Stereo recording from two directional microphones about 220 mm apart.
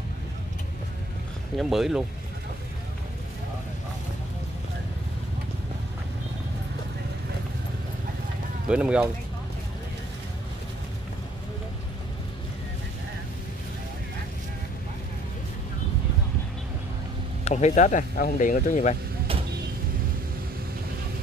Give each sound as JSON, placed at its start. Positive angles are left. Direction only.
{"t": 1.6, "sound": "speech", "side_deg": 0}
{"t": 8.6, "sound": "speech", "side_deg": -5}
{"t": 17.5, "sound": "speech", "side_deg": 30}